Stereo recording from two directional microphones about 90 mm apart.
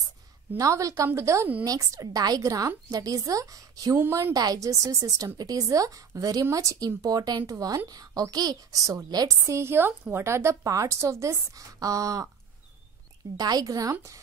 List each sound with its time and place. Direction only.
0.6 s a woman's voice: 40° right (ahead or behind)
9.5 s a woman's voice: 30° right (ahead or behind)
13.4 s speech: 45° right (ahead or behind)